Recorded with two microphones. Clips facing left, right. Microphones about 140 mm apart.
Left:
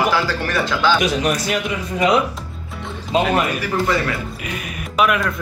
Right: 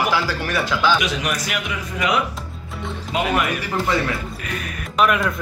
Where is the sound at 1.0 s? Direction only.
30° left (ahead or behind).